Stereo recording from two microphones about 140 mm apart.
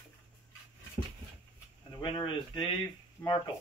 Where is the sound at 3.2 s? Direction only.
10° left (ahead or behind).